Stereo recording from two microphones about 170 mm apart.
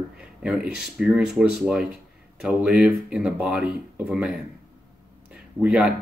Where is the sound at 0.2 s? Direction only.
5° right (ahead or behind).